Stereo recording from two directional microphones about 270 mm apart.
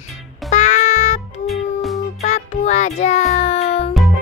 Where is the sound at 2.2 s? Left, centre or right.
Left.